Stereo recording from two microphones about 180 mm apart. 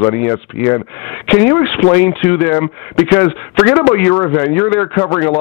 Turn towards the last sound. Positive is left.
turn(degrees=15)  # may be behind; listen again after turning